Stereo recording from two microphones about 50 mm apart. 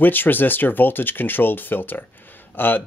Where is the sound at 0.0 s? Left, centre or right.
Left.